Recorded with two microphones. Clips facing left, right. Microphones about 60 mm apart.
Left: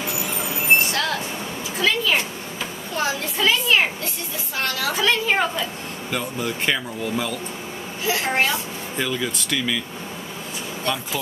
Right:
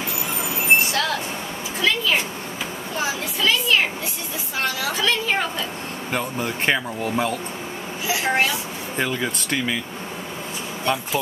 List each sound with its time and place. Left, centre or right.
0.9 s train: centre
1.8 s a woman's voice: centre
3.3 s speech: centre
4.6 s a woman's voice: centre
4.9 s a woman's voice: centre
6.1 s speech: right
8.1 s a woman's voice: centre
8.9 s speech: right